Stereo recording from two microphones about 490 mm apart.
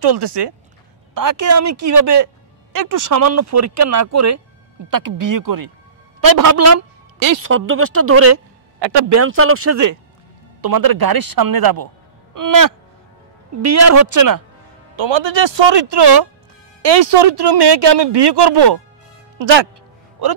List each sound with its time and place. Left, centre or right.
0.0 s speech: right
1.1 s speech: right
8.7 s a sound: right
9.1 s speech: right
10.6 s speech: right
15.0 s speech: right